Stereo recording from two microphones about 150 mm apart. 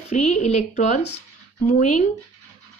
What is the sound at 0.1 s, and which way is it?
A woman's voice, 45° left (ahead or behind).